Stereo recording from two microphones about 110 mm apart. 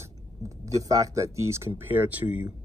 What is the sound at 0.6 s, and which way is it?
Speech, 30° right (ahead or behind).